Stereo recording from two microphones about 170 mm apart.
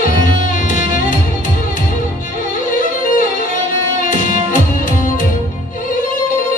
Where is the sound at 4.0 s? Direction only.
50° left (ahead or behind).